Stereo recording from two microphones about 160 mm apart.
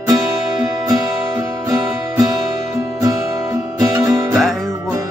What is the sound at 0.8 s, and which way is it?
Music, 20° right (ahead or behind).